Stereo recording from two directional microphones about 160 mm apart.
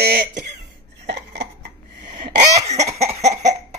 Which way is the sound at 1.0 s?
90° right.